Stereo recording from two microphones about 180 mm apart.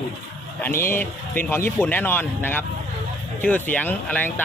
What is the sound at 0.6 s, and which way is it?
A man's voice, 10° left (ahead or behind).